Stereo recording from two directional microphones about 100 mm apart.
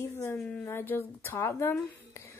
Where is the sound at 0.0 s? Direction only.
25° left (ahead or behind).